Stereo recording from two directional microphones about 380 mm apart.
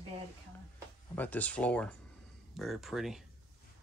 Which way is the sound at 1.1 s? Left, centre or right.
Centre.